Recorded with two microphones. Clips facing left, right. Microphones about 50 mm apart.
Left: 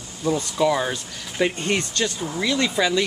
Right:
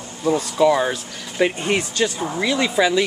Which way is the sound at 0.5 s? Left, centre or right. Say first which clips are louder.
Right 5 dB; centre.